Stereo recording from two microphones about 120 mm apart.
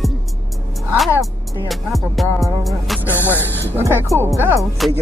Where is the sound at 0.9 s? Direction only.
Centre (ahead or behind).